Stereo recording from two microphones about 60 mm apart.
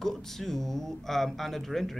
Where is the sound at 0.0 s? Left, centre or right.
Centre.